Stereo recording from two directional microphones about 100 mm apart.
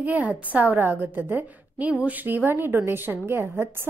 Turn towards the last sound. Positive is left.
turn(degrees=-25)  # may be behind; listen again after turning